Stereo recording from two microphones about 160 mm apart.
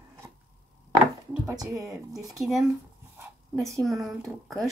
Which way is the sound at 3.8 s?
Centre (ahead or behind).